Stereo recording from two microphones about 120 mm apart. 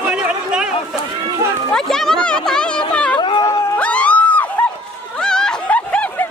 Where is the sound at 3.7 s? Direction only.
10° left (ahead or behind).